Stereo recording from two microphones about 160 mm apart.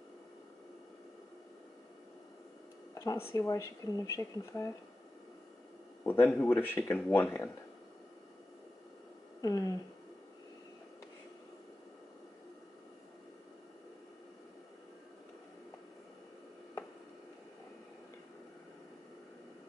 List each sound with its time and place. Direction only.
2.9 s speech: 20° left (ahead or behind)
6.0 s speech: 15° left (ahead or behind)
9.4 s speech: 20° left (ahead or behind)